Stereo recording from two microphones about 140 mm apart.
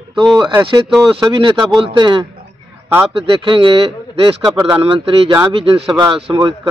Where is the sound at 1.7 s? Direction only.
40° right (ahead or behind).